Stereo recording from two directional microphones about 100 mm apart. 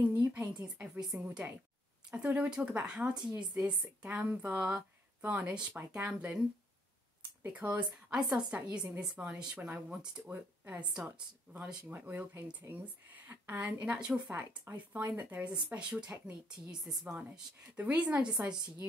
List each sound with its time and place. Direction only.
0.2 s speech: 15° right (ahead or behind)
7.4 s a woman's voice: 15° right (ahead or behind)